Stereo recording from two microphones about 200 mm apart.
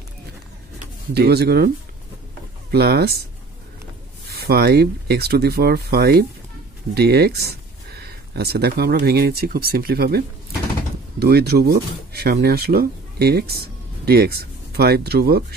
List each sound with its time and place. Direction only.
1.1 s speech: 55° right (ahead or behind)
2.7 s speech: 50° right (ahead or behind)
4.3 s speech: 50° right (ahead or behind)